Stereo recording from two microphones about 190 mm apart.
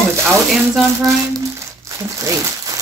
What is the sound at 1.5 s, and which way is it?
Crumpling, 15° right (ahead or behind).